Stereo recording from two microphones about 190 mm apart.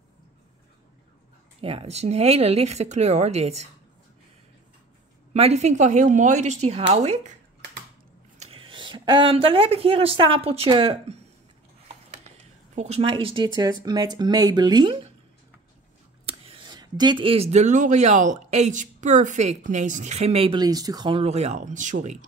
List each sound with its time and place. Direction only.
1.6 s speech: 30° right (ahead or behind)
5.3 s speech: 35° right (ahead or behind)
8.4 s speech: 30° right (ahead or behind)
12.7 s speech: 35° right (ahead or behind)
16.3 s speech: 30° right (ahead or behind)